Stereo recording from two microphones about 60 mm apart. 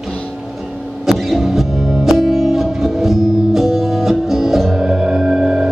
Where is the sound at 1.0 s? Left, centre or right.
Centre.